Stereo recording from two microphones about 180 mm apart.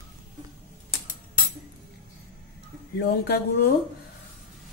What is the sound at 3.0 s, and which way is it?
Speech, 60° left (ahead or behind).